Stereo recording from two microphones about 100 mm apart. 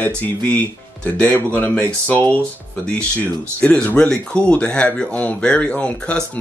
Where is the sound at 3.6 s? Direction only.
10° left (ahead or behind).